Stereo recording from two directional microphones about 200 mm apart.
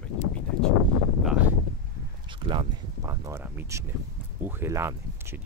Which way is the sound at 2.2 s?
25° right (ahead or behind).